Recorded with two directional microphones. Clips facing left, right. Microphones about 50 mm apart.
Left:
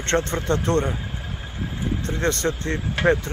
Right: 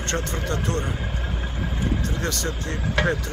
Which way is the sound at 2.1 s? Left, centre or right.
Left.